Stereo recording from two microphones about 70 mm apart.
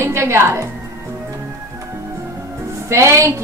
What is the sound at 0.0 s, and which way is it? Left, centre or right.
Speech, right.